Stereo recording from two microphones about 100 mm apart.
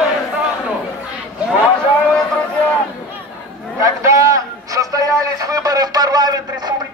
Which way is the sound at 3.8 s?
30° right (ahead or behind).